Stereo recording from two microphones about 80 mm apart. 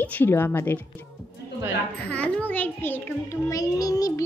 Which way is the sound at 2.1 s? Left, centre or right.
Centre.